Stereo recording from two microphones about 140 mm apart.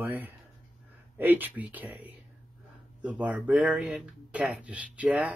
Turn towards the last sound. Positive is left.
turn(degrees=-10)  # may be behind; listen again after turning